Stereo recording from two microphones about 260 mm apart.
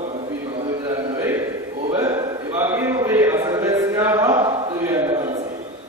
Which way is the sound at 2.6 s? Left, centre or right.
Centre.